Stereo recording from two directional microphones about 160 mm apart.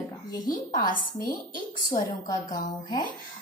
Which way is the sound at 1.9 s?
25° left (ahead or behind).